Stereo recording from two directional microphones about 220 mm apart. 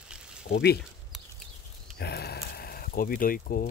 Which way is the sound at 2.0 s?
45° left (ahead or behind).